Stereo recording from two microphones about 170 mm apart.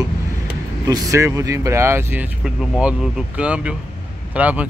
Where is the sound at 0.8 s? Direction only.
20° right (ahead or behind).